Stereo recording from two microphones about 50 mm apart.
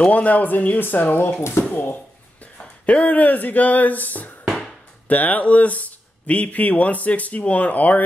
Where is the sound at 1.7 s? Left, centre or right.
Left.